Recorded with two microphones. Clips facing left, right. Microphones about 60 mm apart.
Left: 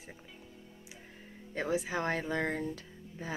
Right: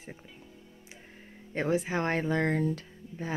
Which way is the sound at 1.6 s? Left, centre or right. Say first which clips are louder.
Right 4 dB; right.